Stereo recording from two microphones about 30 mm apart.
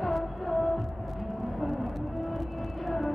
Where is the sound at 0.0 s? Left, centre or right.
Centre.